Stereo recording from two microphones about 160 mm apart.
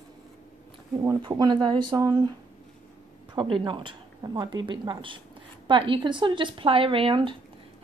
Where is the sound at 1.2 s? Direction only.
25° right (ahead or behind).